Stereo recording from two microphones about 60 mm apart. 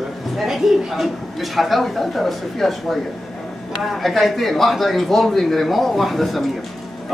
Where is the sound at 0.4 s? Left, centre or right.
Centre.